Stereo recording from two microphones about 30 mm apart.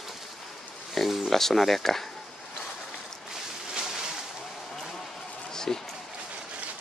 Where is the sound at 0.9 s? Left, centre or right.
Centre.